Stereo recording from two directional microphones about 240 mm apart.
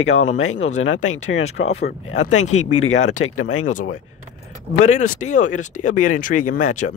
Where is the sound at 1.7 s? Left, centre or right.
Left.